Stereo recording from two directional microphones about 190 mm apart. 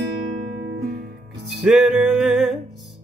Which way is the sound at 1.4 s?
Centre (ahead or behind).